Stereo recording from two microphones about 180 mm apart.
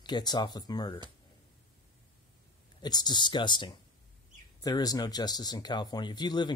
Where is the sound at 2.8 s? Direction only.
25° left (ahead or behind).